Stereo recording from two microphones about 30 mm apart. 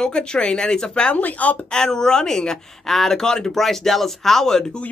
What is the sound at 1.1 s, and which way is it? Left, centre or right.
Speech, left.